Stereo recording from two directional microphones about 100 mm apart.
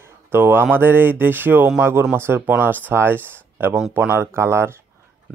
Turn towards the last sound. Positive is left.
turn(degrees=-25)  # may be behind; listen again after turning